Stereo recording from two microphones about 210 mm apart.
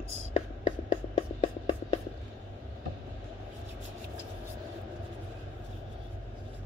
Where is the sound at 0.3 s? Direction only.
30° left (ahead or behind).